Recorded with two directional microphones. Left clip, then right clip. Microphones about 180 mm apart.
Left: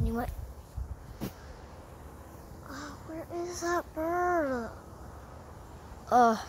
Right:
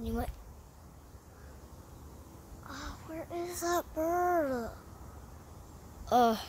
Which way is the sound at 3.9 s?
25° right (ahead or behind).